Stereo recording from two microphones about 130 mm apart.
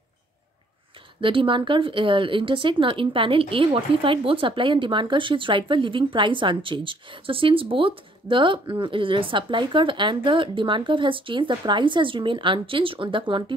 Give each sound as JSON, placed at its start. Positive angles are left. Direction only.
{"t": 1.2, "sound": "speech", "side_deg": -40}